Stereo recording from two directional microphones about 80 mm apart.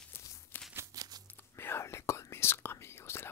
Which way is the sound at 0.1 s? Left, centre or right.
Left.